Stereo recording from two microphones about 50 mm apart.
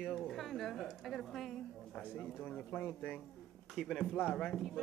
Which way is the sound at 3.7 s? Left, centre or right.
Centre.